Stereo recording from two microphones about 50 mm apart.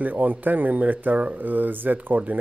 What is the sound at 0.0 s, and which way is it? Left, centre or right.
Speech, right.